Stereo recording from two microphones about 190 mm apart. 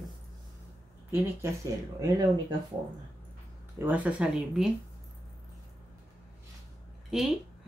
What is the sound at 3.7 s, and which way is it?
Speech, 10° right (ahead or behind).